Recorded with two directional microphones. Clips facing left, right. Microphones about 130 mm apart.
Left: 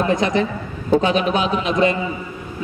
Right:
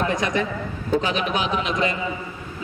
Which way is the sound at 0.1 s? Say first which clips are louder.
Left 5 dB; 25° left (ahead or behind).